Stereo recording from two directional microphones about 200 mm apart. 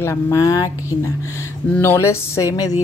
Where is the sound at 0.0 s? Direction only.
15° left (ahead or behind).